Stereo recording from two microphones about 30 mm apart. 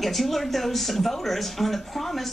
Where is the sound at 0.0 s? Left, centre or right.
Centre.